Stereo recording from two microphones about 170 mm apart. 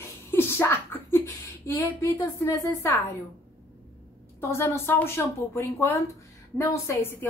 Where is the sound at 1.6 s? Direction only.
15° left (ahead or behind).